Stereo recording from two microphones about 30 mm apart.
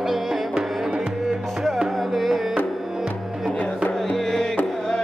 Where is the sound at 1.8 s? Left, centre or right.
Centre.